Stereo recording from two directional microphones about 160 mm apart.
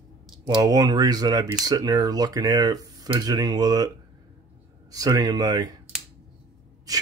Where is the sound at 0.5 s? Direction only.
25° right (ahead or behind).